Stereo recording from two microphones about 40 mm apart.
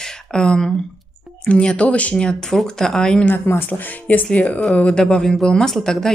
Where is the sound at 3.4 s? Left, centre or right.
Left.